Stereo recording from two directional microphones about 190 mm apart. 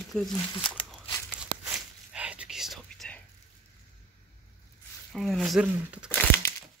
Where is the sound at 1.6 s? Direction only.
5° right (ahead or behind).